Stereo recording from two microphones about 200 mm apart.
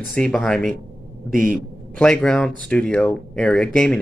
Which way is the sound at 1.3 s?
45° right (ahead or behind).